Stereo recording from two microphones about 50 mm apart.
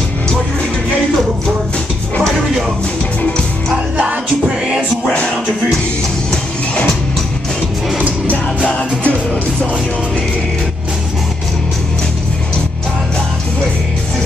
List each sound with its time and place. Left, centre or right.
8.6 s music: left